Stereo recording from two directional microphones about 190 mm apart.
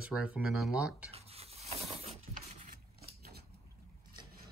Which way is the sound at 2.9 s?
55° right (ahead or behind).